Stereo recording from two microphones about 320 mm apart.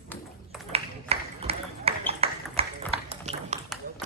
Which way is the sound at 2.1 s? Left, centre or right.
Centre.